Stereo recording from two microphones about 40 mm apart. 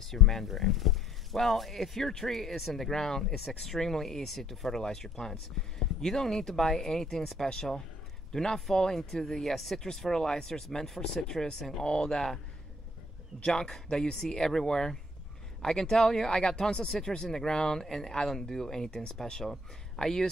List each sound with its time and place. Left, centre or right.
0.1 s speech: centre
13.5 s speech: centre
20.0 s speech: centre